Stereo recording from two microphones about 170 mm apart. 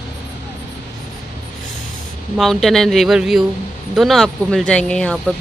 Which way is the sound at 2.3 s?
Centre (ahead or behind).